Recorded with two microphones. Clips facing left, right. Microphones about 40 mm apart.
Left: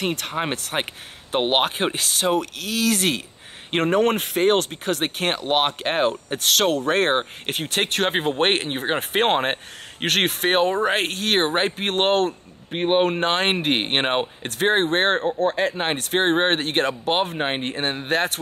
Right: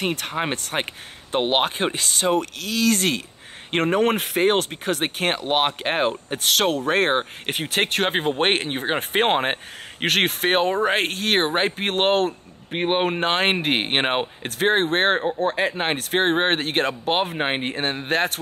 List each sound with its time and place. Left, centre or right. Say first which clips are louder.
0.0 s speech: even; centre